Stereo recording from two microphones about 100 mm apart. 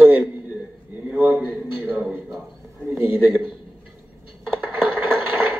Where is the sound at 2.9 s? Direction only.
20° right (ahead or behind).